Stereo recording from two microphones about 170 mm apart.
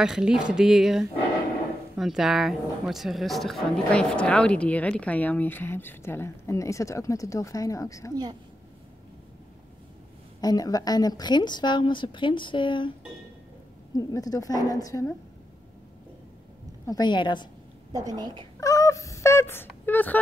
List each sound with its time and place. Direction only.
0.0 s a woman's voice: 5° right (ahead or behind); by 8.1 s 20° left (ahead or behind)
8.1 s a woman's voice: 25° right (ahead or behind)
10.4 s a woman's voice: 20° left (ahead or behind)
13.9 s a woman's voice: 20° left (ahead or behind)
16.8 s a woman's voice: 25° left (ahead or behind)
17.9 s a woman's voice: 25° right (ahead or behind)
18.6 s speech: 20° left (ahead or behind)